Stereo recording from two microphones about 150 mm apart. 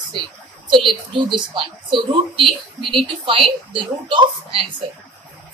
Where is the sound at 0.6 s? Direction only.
35° right (ahead or behind).